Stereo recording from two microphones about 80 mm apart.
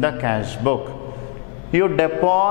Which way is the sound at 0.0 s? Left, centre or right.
Centre.